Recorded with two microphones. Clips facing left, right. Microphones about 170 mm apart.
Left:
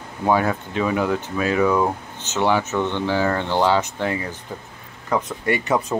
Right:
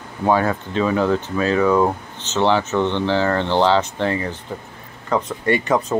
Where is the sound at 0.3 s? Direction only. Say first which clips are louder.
Right 1 dB; 10° left (ahead or behind).